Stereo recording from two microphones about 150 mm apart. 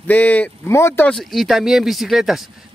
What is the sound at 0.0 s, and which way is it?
Speech, 10° left (ahead or behind).